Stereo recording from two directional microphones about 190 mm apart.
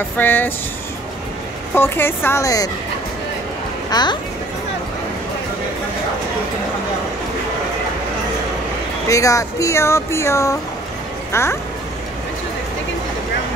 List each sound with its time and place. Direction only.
0.2 s speech: 10° left (ahead or behind)
1.8 s speech: 10° left (ahead or behind)
3.9 s speech: 20° left (ahead or behind)
9.0 s speech: 15° left (ahead or behind)